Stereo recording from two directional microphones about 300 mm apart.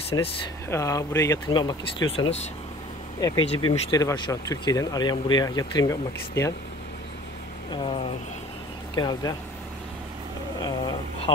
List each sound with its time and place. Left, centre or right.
0.1 s speech: centre
7.7 s speech: centre
10.6 s speech: centre